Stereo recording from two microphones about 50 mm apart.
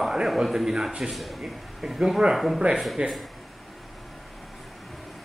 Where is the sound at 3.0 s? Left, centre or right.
Centre.